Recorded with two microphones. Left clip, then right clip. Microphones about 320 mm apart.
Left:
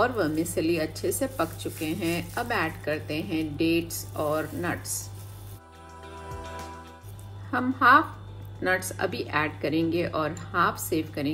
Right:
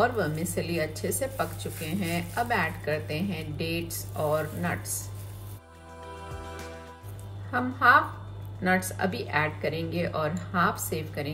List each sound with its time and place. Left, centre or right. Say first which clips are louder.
0.0 s speech: left 1 dB; centre
7.5 s a woman's voice: left 1 dB; centre